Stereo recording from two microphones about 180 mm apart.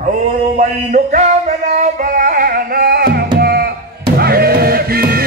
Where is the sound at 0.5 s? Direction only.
40° right (ahead or behind).